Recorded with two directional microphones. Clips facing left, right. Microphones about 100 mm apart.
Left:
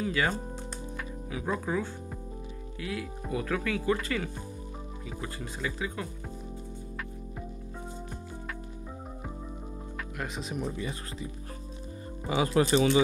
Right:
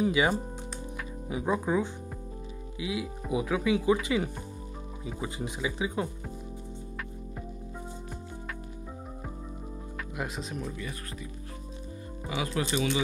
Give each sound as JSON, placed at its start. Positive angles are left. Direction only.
{"t": 0.0, "sound": "speech", "side_deg": -15}
{"t": 10.1, "sound": "speech", "side_deg": -5}
{"t": 10.6, "sound": "speech", "side_deg": 25}
{"t": 12.4, "sound": "speech", "side_deg": 35}